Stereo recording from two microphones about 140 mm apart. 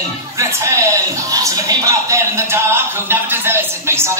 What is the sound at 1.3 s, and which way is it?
Speech, 25° right (ahead or behind).